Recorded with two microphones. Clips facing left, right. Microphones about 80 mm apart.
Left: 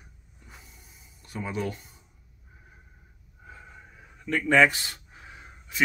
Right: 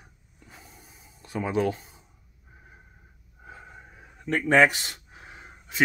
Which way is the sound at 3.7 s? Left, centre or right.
Right.